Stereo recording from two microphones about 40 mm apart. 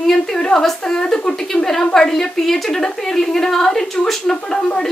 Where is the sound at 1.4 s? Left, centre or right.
Centre.